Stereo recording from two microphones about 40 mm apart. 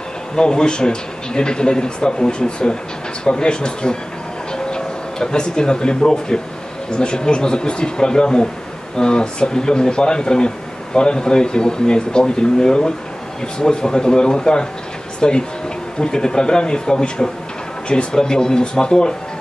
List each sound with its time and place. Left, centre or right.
0.4 s speech: centre